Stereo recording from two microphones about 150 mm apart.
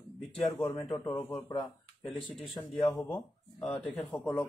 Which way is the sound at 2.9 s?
10° left (ahead or behind).